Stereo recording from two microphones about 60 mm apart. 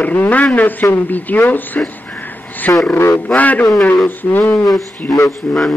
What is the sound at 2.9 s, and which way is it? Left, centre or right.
Speech, left.